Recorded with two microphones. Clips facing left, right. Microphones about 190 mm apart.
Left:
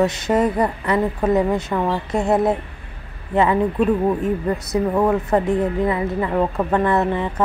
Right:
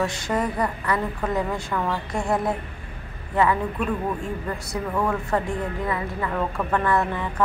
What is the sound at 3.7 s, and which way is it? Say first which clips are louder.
Speech: left 8 dB; 35° left (ahead or behind).